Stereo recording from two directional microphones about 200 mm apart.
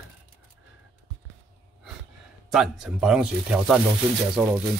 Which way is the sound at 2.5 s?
Centre (ahead or behind).